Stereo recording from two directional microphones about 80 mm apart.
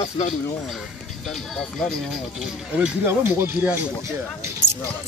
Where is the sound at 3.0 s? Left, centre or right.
Right.